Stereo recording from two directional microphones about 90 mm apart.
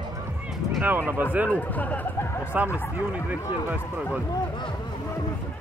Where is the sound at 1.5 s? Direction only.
15° left (ahead or behind).